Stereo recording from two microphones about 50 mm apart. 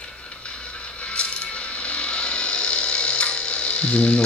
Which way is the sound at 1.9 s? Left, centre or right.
Left.